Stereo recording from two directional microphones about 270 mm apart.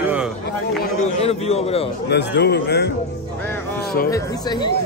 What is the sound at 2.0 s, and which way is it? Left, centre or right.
Speech, left.